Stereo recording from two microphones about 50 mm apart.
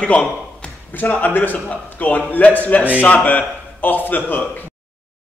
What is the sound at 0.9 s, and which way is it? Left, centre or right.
Speech, left.